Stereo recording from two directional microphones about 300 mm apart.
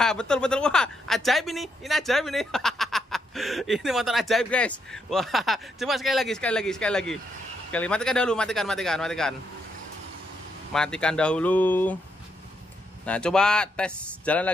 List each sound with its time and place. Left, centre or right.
0.0 s a woman's voice: centre
10.7 s a woman's voice: centre
13.0 s a woman's voice: centre